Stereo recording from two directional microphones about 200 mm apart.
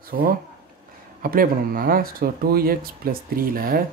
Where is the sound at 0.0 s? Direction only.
45° right (ahead or behind).